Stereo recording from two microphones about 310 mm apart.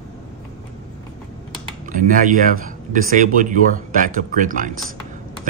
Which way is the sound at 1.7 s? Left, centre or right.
Right.